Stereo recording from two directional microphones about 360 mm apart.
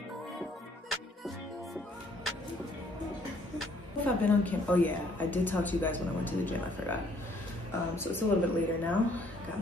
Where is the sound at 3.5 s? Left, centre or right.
Centre.